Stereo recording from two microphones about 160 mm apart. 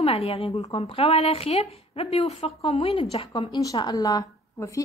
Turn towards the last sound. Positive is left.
turn(degrees=20)  # may be behind; listen again after turning